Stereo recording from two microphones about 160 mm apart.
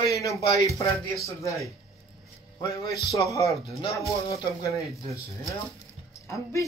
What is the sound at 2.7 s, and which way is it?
Speech, 20° left (ahead or behind).